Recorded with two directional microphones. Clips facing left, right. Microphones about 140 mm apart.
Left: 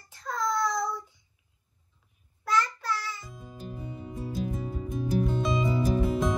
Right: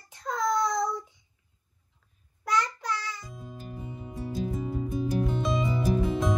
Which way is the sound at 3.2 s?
Centre (ahead or behind).